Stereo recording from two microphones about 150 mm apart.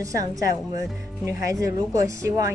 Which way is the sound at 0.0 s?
20° right (ahead or behind).